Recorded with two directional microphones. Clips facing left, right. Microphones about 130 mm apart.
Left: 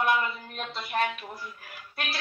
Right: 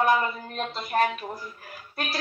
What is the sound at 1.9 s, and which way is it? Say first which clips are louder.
Speech: right 4 dB; 40° right (ahead or behind).